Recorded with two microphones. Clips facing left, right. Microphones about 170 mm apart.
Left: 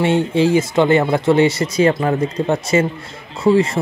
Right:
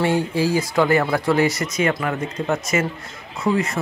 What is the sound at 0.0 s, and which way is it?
Speech, 25° left (ahead or behind).